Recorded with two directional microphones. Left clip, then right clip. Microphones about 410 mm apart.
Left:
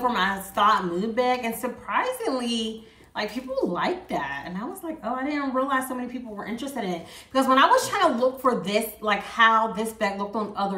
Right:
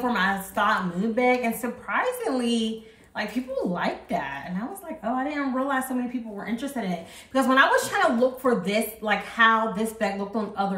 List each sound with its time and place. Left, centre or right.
0.0 s a woman's voice: centre